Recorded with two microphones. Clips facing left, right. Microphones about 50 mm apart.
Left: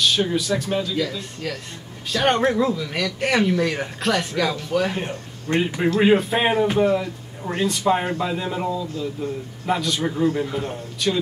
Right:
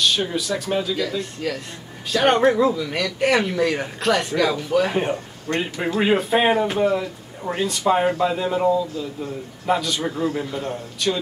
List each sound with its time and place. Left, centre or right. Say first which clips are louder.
0.0 s speech: left 1 dB; centre